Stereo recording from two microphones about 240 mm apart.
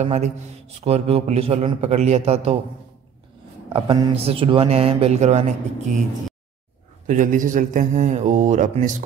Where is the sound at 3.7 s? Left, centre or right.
Centre.